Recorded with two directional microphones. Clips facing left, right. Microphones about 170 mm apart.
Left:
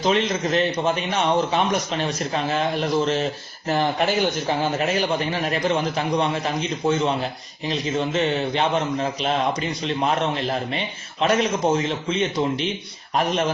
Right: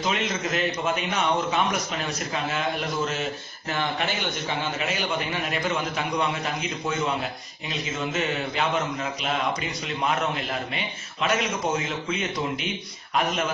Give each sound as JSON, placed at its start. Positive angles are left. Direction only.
{"t": 0.0, "sound": "a man's voice", "side_deg": 30}